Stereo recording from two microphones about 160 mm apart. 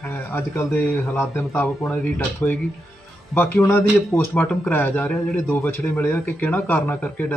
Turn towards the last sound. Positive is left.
turn(degrees=10)  # may be behind; listen again after turning